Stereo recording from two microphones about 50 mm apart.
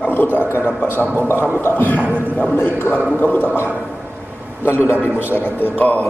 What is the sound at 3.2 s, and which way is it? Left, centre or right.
Speech, left.